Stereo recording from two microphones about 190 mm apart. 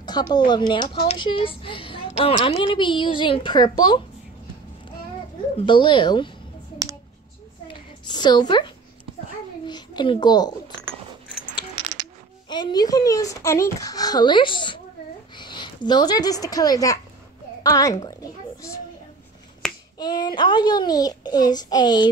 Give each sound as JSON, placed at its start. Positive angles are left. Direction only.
{"t": 0.0, "sound": "speech", "side_deg": 20}
{"t": 5.6, "sound": "speech", "side_deg": 25}
{"t": 7.6, "sound": "a sound", "side_deg": 25}
{"t": 12.4, "sound": "a woman's voice", "side_deg": 20}
{"t": 17.9, "sound": "a sound", "side_deg": 20}
{"t": 19.6, "sound": "finger snapping", "side_deg": 0}
{"t": 20.0, "sound": "speech", "side_deg": 20}